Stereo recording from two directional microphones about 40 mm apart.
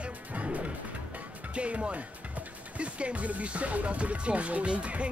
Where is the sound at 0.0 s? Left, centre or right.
Right.